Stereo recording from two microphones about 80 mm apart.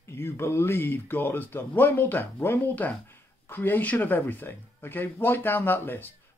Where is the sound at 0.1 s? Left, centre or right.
Left.